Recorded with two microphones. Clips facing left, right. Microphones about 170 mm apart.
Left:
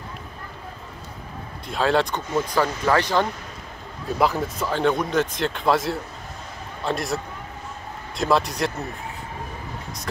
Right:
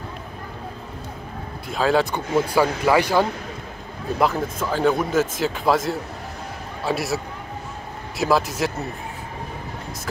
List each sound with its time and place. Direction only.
1.7 s speech: centre (ahead or behind)
4.2 s a man's voice: centre (ahead or behind)
8.2 s speech: centre (ahead or behind)